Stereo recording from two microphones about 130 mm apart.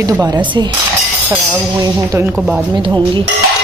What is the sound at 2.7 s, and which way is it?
Speech, 35° right (ahead or behind).